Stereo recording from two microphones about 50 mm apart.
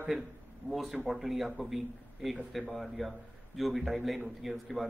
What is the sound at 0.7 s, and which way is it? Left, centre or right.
A man's voice, centre.